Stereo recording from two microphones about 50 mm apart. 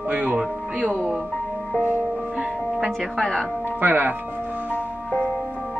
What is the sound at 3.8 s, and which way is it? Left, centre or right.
Speech, right.